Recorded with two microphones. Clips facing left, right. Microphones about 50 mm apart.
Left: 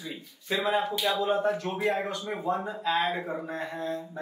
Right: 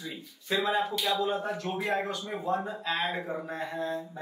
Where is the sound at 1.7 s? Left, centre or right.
Centre.